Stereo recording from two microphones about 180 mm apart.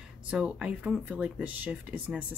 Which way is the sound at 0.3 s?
5° right (ahead or behind).